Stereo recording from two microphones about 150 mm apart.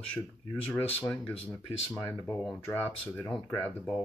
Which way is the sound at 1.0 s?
5° left (ahead or behind).